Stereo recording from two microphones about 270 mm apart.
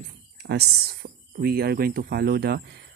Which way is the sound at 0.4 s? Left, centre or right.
Right.